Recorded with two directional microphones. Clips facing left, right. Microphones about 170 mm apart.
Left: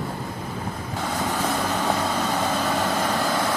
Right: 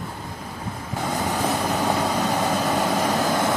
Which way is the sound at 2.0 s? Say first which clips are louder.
Right 2 dB; 15° right (ahead or behind).